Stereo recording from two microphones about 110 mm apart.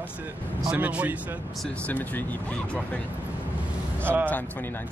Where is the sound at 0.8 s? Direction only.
15° right (ahead or behind).